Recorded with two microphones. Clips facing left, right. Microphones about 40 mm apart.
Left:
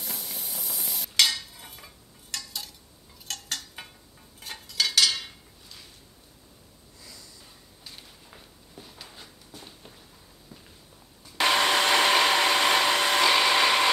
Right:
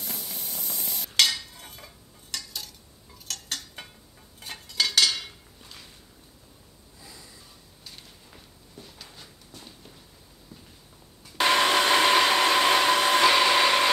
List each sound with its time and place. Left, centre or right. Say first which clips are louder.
0.0 s stir: even; centre
2.3 s a sound: even; centre
7.1 s snort: right 1 dB; right
7.8 s a sound: left 1 dB; centre
10.5 s walk: right 1 dB; centre
11.3 s hair dryer: right 1 dB; centre